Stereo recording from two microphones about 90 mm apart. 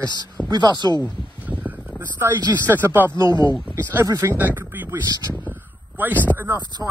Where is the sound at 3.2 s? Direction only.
50° left (ahead or behind).